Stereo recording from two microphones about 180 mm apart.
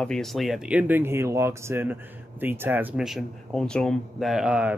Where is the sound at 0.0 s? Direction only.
5° left (ahead or behind).